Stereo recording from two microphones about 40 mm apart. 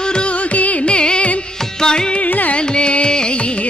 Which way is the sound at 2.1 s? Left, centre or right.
Left.